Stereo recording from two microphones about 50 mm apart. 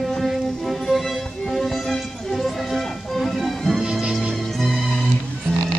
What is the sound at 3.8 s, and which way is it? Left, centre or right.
Music, centre.